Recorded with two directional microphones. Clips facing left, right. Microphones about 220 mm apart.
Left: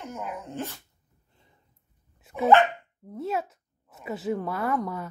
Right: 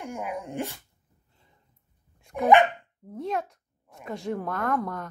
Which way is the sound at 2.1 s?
5° left (ahead or behind).